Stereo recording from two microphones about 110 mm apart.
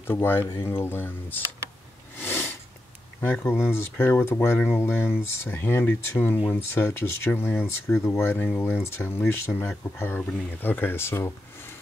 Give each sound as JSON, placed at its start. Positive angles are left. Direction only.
{"t": 0.0, "sound": "speech", "side_deg": 20}
{"t": 2.1, "sound": "a sound", "side_deg": 20}
{"t": 3.2, "sound": "speech", "side_deg": 20}